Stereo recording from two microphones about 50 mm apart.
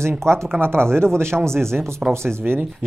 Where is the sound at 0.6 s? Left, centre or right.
Right.